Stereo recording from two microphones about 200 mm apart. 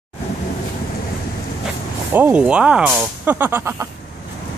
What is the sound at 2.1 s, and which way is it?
Speech, 5° right (ahead or behind).